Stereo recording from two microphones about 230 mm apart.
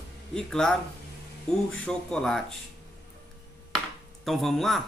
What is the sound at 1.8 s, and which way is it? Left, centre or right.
Speech, centre.